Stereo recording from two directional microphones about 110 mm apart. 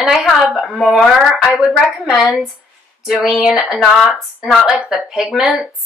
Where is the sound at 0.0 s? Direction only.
Centre (ahead or behind).